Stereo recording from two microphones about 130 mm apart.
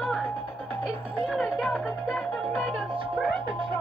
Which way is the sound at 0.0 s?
5° left (ahead or behind).